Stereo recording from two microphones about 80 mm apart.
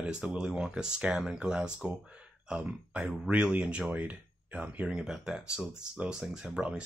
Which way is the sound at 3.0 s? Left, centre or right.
Centre.